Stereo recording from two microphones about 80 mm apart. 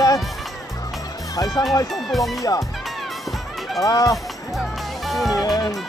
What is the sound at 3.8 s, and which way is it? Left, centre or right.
Speech, left.